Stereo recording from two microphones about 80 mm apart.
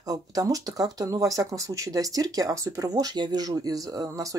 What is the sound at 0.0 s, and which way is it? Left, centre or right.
Speech, right.